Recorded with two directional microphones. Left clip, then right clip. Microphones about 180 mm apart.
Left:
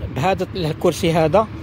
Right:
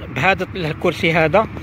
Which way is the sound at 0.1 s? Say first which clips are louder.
Right 3 dB; 20° left (ahead or behind).